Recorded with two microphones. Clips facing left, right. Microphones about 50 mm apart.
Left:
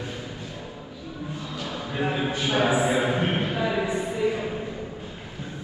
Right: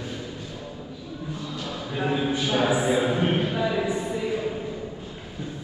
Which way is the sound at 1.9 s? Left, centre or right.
Centre.